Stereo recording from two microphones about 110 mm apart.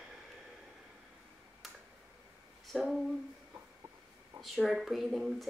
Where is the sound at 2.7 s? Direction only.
Centre (ahead or behind).